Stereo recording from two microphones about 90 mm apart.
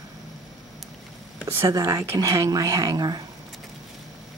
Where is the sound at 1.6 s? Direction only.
35° right (ahead or behind).